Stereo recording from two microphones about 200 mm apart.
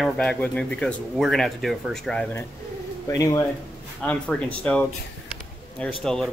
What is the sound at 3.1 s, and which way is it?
Speech, 15° left (ahead or behind).